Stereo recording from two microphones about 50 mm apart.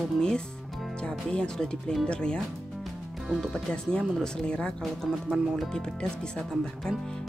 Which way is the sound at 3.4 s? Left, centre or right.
Centre.